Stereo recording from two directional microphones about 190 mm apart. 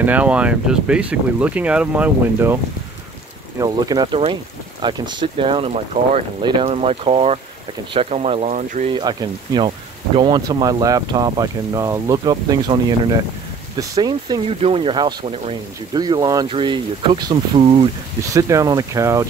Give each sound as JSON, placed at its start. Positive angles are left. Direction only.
{"t": 0.0, "sound": "speech", "side_deg": -5}
{"t": 8.9, "sound": "speech", "side_deg": -20}
{"t": 13.7, "sound": "speech", "side_deg": -20}
{"t": 18.3, "sound": "speech", "side_deg": -15}